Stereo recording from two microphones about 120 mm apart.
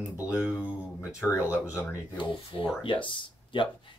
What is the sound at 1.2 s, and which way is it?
Speech, 15° left (ahead or behind).